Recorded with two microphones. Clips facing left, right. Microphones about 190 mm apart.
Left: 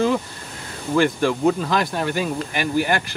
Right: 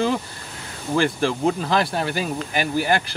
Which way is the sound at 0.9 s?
35° right (ahead or behind).